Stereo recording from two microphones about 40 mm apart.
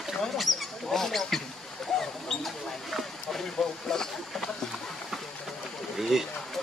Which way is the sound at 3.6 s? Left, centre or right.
Centre.